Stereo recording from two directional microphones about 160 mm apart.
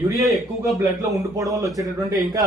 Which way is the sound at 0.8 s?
20° right (ahead or behind).